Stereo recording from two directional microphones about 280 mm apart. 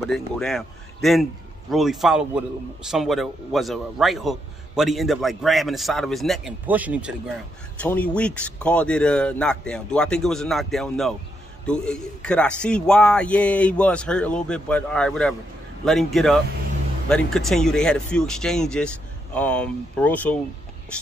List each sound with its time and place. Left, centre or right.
0.0 s a man's voice: centre